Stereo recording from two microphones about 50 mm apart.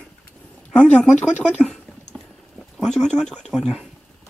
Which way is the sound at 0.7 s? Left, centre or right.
Left.